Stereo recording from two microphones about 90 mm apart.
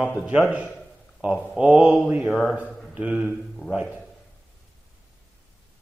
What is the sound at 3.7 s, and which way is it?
Speech, 10° right (ahead or behind).